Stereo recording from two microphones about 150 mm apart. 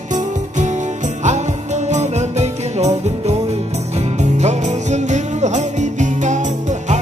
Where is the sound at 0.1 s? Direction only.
55° right (ahead or behind).